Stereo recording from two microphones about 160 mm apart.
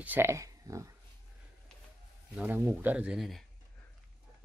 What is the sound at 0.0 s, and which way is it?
Speech, 15° right (ahead or behind).